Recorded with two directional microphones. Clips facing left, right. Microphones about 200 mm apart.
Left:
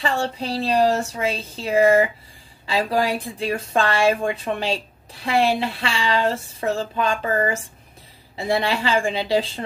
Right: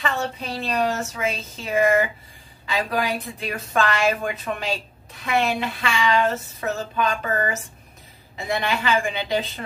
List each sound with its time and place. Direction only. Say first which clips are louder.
0.0 s a woman's voice: left 3 dB; 30° left (ahead or behind)